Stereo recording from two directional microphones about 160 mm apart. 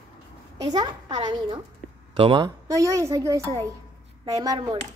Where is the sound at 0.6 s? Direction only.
25° right (ahead or behind).